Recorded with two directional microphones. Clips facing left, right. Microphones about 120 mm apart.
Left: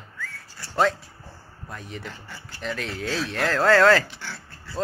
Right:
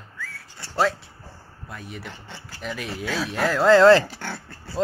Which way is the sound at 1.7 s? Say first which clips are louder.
Even; 5° right (ahead or behind).